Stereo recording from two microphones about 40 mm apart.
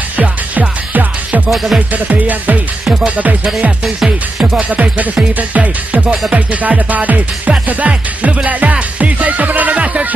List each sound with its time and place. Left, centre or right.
0.2 s music: right
1.5 s music: centre
2.0 s speech: right
2.8 s speech: centre
4.6 s speech: right
8.5 s music: right